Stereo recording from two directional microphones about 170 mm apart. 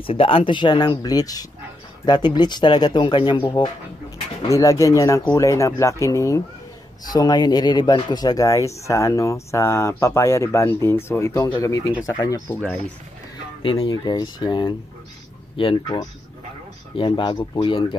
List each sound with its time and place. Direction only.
0.0 s speech: 30° left (ahead or behind)
4.5 s speech: 20° left (ahead or behind)
13.6 s speech: 30° left (ahead or behind)